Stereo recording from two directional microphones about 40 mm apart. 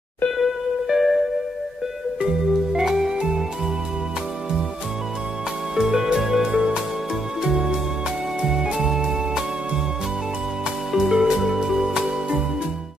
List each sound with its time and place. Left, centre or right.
0.4 s music: centre
2.7 s music: centre
5.8 s music: centre
10.9 s music: centre